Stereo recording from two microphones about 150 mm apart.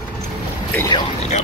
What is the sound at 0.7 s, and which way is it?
Speech, 25° left (ahead or behind).